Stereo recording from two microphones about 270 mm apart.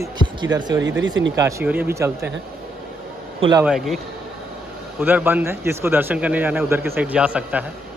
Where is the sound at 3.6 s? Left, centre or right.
Centre.